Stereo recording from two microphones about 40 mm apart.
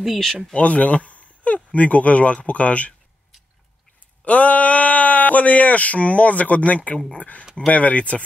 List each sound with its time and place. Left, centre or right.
0.0 s speech: centre
0.5 s speech: left
4.2 s speech: left